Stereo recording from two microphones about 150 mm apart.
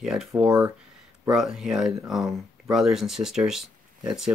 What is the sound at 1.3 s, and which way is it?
Speech, 5° right (ahead or behind).